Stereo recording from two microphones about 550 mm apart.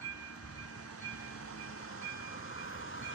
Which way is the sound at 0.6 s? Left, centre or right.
Left.